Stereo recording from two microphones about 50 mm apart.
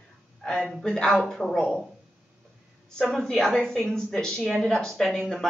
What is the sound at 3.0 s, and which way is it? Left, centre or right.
Speech, centre.